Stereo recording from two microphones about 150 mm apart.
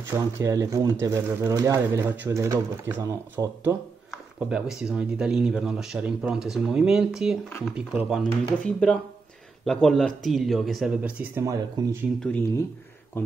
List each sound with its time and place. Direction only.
0.1 s speech: 20° right (ahead or behind)
4.1 s speech: 5° right (ahead or behind)
8.2 s speech: 5° left (ahead or behind)
11.4 s speech: 20° right (ahead or behind)